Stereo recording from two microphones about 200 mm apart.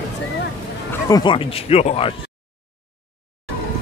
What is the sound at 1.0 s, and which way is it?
Speech, 20° left (ahead or behind).